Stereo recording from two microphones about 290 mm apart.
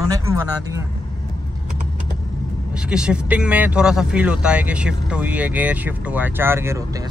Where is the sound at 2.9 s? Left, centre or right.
Centre.